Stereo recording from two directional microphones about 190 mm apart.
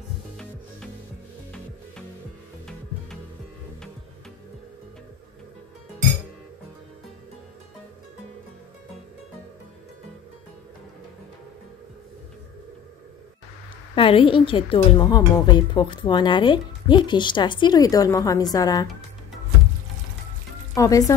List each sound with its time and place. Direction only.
13.9 s a woman's voice: 30° left (ahead or behind)
20.7 s music: 15° left (ahead or behind)